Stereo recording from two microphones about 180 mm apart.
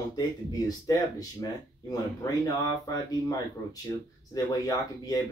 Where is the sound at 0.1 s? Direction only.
20° left (ahead or behind).